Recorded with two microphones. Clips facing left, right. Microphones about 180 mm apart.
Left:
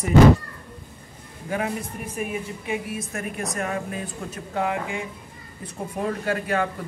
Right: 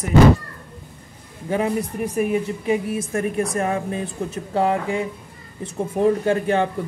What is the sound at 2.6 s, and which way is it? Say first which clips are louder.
A woman's voice: right 6 dB; 35° right (ahead or behind).